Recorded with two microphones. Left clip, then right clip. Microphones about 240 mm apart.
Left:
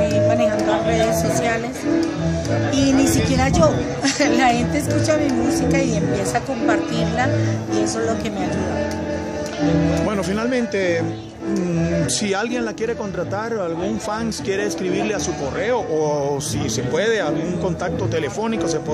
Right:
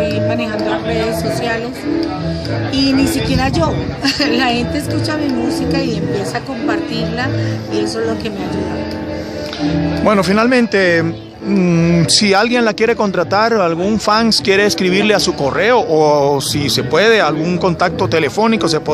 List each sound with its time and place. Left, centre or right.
2.7 s a woman's voice: centre
10.0 s speech: right